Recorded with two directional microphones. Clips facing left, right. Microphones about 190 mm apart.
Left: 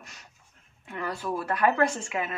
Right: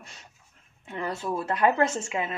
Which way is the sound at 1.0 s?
25° right (ahead or behind).